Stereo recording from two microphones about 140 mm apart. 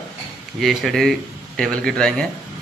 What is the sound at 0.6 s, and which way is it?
Speech, centre (ahead or behind).